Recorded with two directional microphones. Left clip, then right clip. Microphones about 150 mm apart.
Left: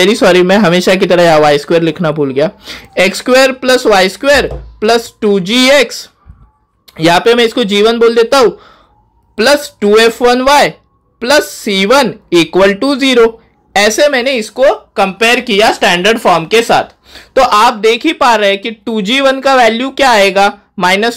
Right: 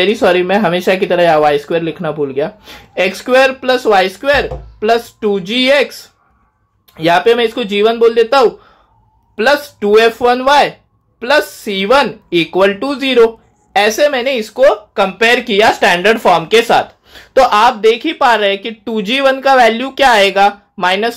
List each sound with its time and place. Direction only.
0.0 s speech: 40° left (ahead or behind)